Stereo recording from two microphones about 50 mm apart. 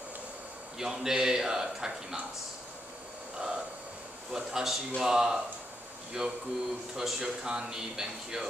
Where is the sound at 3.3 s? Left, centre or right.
Centre.